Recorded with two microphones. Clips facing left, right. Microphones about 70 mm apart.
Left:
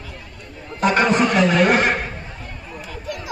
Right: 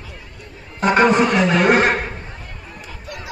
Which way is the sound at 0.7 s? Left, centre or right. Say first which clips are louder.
Right 3 dB; right.